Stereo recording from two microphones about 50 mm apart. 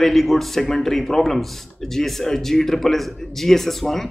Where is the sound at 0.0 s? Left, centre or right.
Centre.